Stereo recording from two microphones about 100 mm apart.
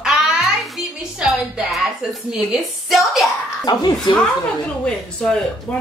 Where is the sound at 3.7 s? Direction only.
45° left (ahead or behind).